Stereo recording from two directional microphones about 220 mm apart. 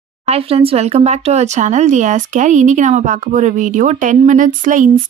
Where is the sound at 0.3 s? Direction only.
25° right (ahead or behind).